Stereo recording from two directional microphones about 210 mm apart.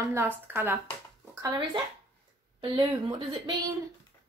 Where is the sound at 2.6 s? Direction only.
25° right (ahead or behind).